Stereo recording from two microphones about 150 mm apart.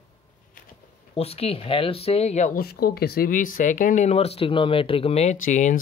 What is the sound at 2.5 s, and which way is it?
Speech, 90° left.